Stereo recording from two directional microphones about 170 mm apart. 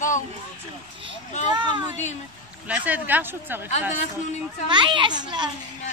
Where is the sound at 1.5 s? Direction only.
25° right (ahead or behind).